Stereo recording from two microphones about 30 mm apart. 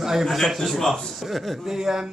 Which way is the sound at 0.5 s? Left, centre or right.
Centre.